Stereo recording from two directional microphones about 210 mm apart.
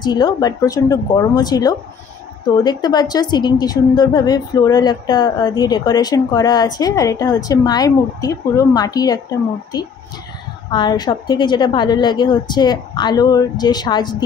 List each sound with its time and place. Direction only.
0.0 s a woman's voice: 20° left (ahead or behind)
10.7 s a woman's voice: 20° left (ahead or behind)